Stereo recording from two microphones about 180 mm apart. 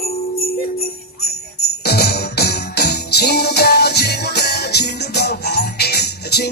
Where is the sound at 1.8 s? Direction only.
60° left (ahead or behind).